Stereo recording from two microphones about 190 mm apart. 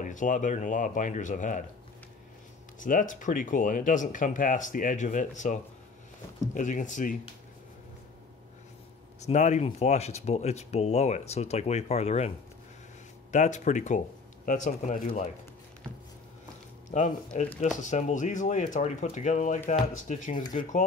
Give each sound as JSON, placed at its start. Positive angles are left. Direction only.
{"t": 0.0, "sound": "speech", "side_deg": 40}
{"t": 2.8, "sound": "speech", "side_deg": 45}
{"t": 9.2, "sound": "speech", "side_deg": 40}
{"t": 13.3, "sound": "speech", "side_deg": 40}
{"t": 16.9, "sound": "speech", "side_deg": 40}